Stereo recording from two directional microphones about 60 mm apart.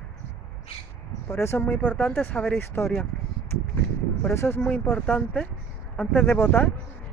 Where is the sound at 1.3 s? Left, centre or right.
Left.